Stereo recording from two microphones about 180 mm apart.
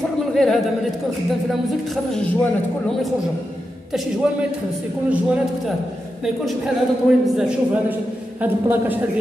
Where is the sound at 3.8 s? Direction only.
Centre (ahead or behind).